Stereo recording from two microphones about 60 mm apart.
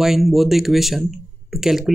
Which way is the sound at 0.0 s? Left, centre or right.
Centre.